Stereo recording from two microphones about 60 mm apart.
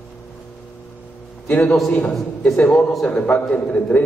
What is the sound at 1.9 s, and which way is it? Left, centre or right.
A man's voice, left.